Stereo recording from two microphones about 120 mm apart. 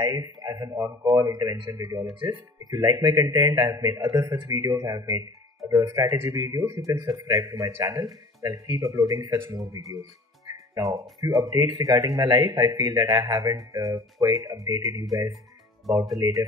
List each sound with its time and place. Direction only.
0.0 s a man's voice: 30° right (ahead or behind)
10.4 s music: 25° right (ahead or behind)
11.2 s speech: 30° right (ahead or behind)
15.9 s speech: centre (ahead or behind)